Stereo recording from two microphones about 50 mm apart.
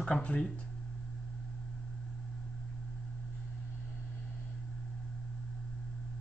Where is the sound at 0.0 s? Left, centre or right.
Left.